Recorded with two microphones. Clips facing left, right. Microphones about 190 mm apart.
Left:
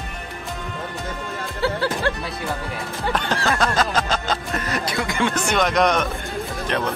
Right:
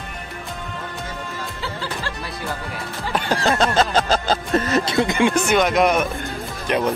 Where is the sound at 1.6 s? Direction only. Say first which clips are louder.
Left 10 dB; 60° left (ahead or behind).